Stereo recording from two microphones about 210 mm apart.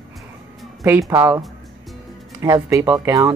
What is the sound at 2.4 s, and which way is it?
Speech, 15° right (ahead or behind).